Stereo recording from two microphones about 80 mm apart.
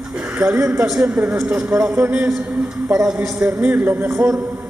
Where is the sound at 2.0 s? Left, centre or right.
Right.